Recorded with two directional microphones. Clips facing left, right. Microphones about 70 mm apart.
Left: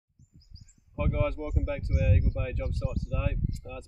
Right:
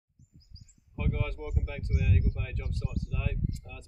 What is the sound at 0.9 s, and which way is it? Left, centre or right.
Speech, centre.